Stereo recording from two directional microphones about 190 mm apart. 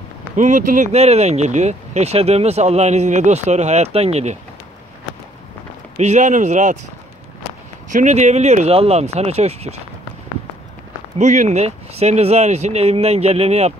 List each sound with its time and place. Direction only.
0.4 s speech: 40° right (ahead or behind)
5.9 s speech: 40° right (ahead or behind)
7.9 s speech: 40° right (ahead or behind)
11.1 s speech: 40° right (ahead or behind)